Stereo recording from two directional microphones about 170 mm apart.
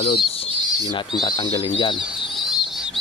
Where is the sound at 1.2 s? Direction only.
25° left (ahead or behind).